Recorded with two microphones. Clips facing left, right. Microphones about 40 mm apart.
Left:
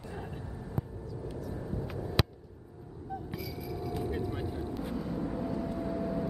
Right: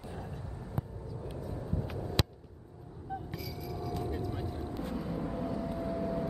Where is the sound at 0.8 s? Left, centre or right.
Centre.